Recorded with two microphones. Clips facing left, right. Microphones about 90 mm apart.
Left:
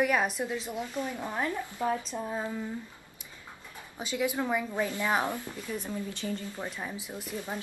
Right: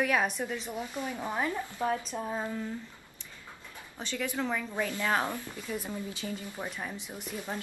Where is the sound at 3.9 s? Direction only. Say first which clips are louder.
Left 4 dB; 10° left (ahead or behind).